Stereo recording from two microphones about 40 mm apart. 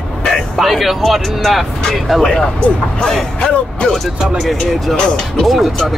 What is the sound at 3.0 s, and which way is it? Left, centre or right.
Speech, centre.